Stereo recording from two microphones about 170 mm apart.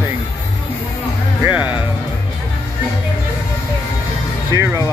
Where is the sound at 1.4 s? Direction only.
10° right (ahead or behind).